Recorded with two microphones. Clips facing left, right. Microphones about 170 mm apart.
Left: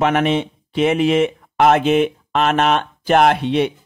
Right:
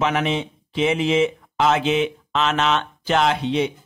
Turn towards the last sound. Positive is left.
turn(degrees=60)  # may be behind; listen again after turning